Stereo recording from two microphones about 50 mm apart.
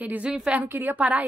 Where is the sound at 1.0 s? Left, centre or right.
Right.